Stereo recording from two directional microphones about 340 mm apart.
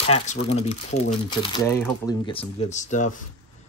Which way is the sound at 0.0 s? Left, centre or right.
Centre.